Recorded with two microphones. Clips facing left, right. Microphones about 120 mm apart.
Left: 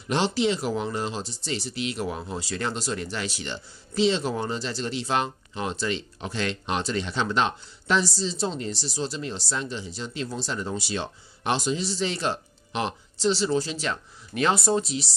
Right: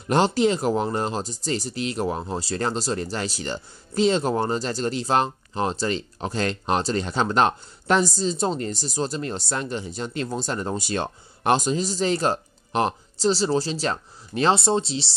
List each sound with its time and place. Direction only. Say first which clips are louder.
0.1 s speech: right 4 dB; 45° right (ahead or behind); by 15.1 s 30° right (ahead or behind)